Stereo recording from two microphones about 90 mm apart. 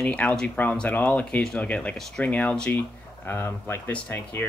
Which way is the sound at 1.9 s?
5° left (ahead or behind).